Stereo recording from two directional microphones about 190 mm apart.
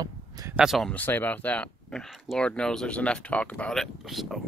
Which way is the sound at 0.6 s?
Centre (ahead or behind).